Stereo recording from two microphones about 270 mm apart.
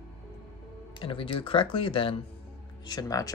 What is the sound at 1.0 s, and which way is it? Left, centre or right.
Speech, centre.